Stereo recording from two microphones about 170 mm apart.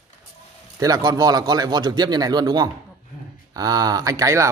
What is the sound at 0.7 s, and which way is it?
Speech, 20° right (ahead or behind).